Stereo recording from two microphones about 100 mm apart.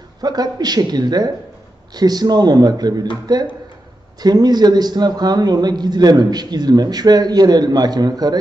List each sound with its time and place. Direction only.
0.2 s a man's voice: 40° right (ahead or behind)